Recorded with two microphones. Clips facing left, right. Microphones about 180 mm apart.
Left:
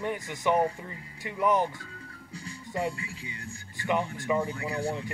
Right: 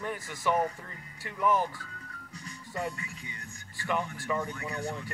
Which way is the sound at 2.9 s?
30° left (ahead or behind).